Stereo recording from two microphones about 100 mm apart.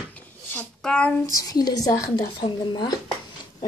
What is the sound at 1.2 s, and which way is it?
Speech, 35° left (ahead or behind).